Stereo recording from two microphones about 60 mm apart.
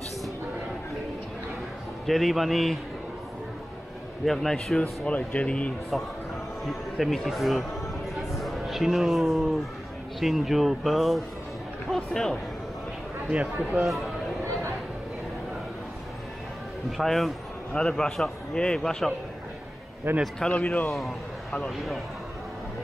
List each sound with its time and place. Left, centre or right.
2.0 s speech: centre
4.3 s speech: centre
5.0 s speech: centre
7.0 s a man's voice: centre
13.3 s speech: centre
13.8 s speech: centre
16.9 s a man's voice: centre
20.3 s speech: centre
21.6 s speech: centre